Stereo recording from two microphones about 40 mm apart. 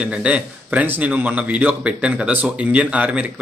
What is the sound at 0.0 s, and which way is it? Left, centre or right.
Speech, right.